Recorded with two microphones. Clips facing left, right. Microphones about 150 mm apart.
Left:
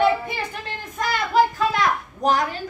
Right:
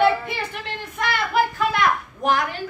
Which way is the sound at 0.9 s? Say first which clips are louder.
Left 2 dB; 40° left (ahead or behind).